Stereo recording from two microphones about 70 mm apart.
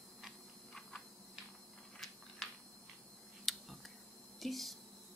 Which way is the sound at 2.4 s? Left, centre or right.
Centre.